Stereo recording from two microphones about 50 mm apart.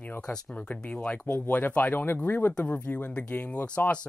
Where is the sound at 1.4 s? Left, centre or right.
Left.